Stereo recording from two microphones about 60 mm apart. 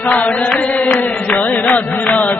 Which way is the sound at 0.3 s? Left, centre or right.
Left.